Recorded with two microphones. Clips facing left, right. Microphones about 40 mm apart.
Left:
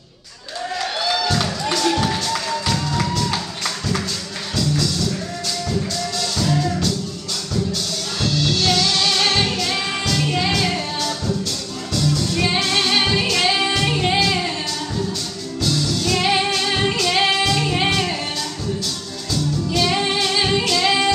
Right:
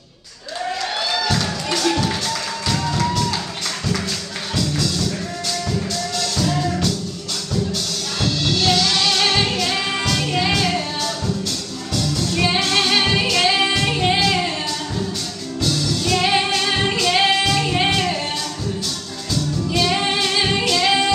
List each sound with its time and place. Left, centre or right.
1.1 s music: centre
4.6 s music: centre
8.2 s music: centre
12.4 s music: centre
15.6 s music: centre
19.7 s female singing: centre